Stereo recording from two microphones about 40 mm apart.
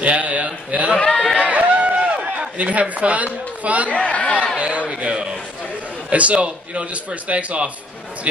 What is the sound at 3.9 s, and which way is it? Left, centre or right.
Speech, left.